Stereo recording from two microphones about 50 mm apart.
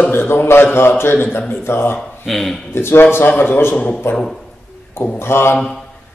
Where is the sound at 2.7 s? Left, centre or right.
Left.